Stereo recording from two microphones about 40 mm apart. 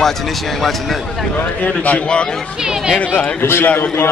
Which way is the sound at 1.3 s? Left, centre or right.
Left.